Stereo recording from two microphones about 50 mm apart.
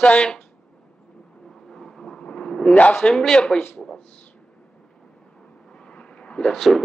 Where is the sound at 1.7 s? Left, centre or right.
Centre.